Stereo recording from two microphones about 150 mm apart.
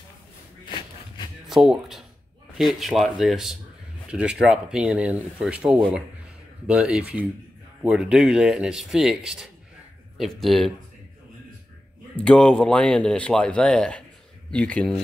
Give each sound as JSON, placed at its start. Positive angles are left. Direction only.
{"t": 0.7, "sound": "a sound", "side_deg": 35}
{"t": 1.5, "sound": "speech", "side_deg": 0}
{"t": 12.2, "sound": "speech", "side_deg": 5}